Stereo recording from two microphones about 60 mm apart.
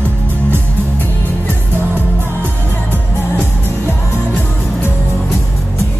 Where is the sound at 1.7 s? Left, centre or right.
Right.